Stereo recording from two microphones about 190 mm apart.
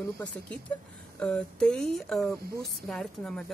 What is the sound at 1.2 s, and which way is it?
Speech, 5° left (ahead or behind).